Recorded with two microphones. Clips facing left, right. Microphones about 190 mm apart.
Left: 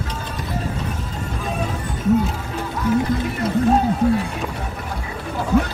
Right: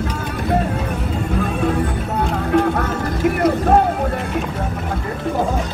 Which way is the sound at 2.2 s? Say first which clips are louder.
Right 9 dB; 65° right (ahead or behind).